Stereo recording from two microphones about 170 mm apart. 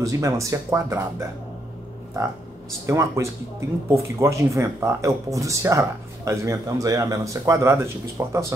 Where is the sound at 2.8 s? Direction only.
15° right (ahead or behind).